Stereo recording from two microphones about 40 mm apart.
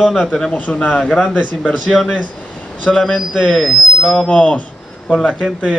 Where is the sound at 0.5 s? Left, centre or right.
Left.